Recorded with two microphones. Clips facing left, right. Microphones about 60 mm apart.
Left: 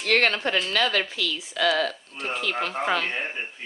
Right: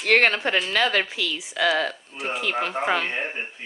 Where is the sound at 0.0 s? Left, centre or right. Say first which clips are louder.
Right 3 dB; right.